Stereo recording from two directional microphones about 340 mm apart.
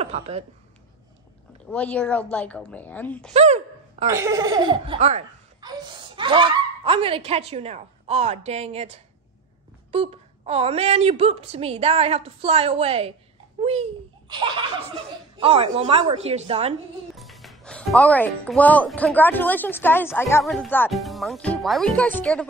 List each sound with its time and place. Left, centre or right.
0.0 s a woman's voice: centre
1.7 s speech: centre
3.3 s a sound: centre
4.1 s a child's voice: centre
15.3 s speech: centre
17.1 s speech: centre